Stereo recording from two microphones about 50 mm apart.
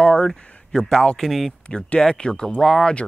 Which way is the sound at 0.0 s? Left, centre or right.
Centre.